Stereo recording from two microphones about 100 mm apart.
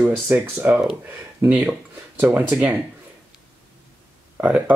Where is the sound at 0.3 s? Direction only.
15° right (ahead or behind).